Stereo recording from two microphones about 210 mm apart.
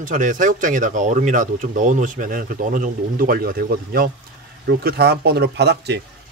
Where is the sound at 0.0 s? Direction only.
40° right (ahead or behind).